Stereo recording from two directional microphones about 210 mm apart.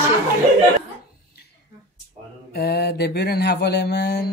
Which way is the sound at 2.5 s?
50° left (ahead or behind).